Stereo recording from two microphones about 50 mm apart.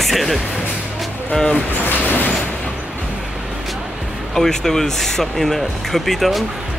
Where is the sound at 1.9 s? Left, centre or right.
Left.